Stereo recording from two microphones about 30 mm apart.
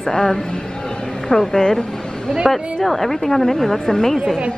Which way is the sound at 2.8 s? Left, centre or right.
Centre.